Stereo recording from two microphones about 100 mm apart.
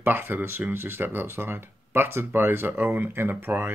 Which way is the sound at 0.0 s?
20° right (ahead or behind).